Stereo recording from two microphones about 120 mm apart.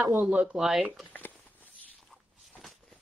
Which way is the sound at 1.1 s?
15° left (ahead or behind).